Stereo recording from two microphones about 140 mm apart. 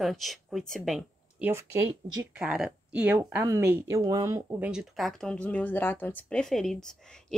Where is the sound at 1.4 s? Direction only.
15° right (ahead or behind).